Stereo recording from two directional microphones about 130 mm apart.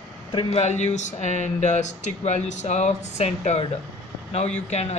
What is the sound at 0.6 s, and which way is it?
Speech, 60° left (ahead or behind).